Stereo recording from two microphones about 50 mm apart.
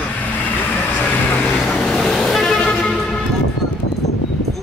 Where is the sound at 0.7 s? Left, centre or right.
Left.